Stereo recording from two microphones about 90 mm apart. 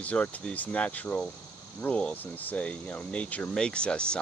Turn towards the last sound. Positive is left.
turn(degrees=10)  # may be behind; listen again after turning